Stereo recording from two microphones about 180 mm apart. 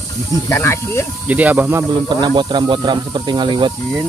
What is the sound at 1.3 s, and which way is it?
Speech, 10° right (ahead or behind).